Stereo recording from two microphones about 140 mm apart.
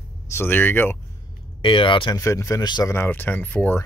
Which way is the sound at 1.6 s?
40° left (ahead or behind).